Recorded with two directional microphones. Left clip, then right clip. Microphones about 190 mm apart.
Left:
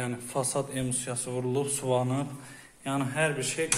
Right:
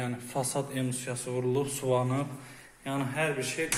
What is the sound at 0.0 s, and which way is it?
A man's voice, 10° left (ahead or behind).